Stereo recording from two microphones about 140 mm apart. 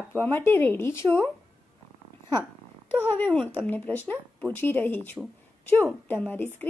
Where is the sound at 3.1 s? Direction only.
10° left (ahead or behind).